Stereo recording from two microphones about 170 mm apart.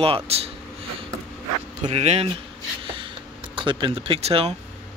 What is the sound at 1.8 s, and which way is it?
Speech, 40° right (ahead or behind).